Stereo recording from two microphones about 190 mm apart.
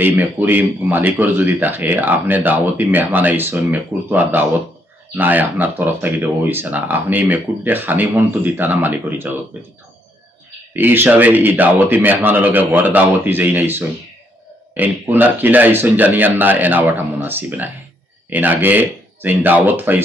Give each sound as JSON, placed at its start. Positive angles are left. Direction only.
{"t": 0.0, "sound": "speech", "side_deg": -10}
{"t": 10.7, "sound": "speech", "side_deg": -10}